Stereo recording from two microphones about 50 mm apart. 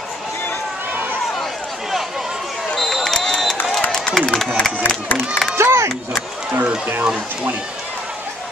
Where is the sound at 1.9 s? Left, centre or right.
Centre.